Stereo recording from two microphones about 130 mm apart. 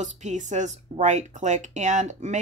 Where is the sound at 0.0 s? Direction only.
65° right (ahead or behind).